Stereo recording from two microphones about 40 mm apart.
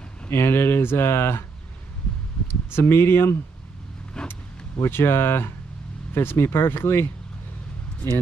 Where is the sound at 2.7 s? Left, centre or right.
Left.